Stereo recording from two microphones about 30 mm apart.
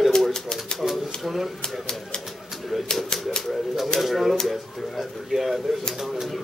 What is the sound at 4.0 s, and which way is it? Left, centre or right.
Speech, centre.